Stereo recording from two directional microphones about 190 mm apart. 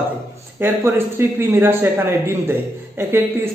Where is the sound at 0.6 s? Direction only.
10° right (ahead or behind).